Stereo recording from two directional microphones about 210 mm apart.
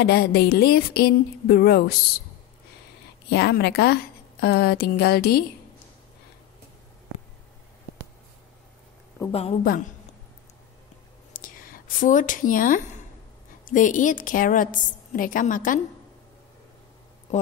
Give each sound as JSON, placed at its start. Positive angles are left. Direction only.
{"t": 0.0, "sound": "a woman's voice", "side_deg": 50}
{"t": 3.3, "sound": "a woman's voice", "side_deg": 50}
{"t": 9.3, "sound": "a woman's voice", "side_deg": 30}
{"t": 11.3, "sound": "a sound", "side_deg": 40}
{"t": 13.7, "sound": "a woman's voice", "side_deg": 40}